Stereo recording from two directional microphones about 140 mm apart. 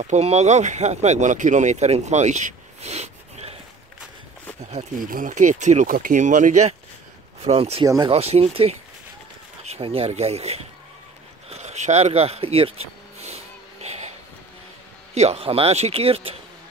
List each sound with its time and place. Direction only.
0.0 s speech: 55° right (ahead or behind)
4.9 s speech: 75° right (ahead or behind)
7.4 s speech: 45° right (ahead or behind)
7.8 s speech: 30° right (ahead or behind)
8.1 s speech: 45° right (ahead or behind)
11.4 s a sound: 50° right (ahead or behind)
15.1 s speech: 50° right (ahead or behind)